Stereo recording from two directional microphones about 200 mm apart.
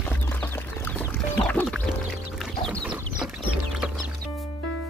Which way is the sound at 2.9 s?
Centre (ahead or behind).